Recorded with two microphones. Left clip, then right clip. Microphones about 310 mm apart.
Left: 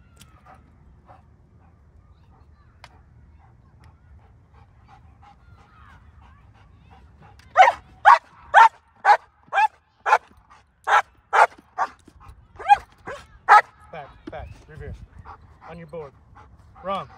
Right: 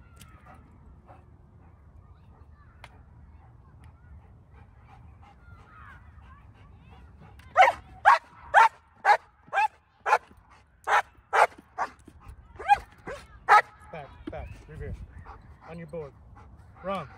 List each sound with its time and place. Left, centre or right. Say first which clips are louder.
4.8 s goose: left 5 dB; centre
7.2 s dog: left 5 dB; centre